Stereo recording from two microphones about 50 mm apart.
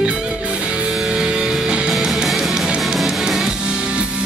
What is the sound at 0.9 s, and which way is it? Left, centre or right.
Music, centre.